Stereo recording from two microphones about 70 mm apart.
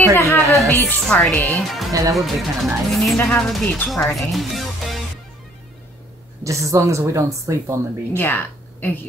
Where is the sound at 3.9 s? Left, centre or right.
Centre.